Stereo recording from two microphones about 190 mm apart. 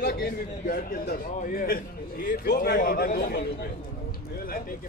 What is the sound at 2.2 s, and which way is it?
A man's voice, 50° left (ahead or behind).